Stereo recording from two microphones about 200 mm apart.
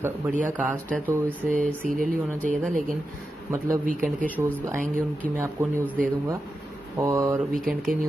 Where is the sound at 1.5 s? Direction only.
40° right (ahead or behind).